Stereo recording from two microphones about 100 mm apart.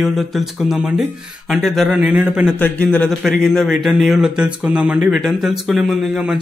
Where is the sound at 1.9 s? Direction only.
15° right (ahead or behind).